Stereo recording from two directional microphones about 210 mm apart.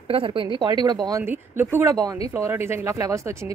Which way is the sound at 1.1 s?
10° right (ahead or behind).